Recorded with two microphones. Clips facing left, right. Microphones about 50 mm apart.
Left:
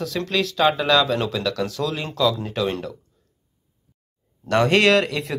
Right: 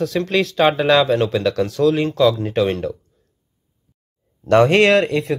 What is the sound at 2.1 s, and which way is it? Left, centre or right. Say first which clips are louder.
Speech: right 6 dB; right.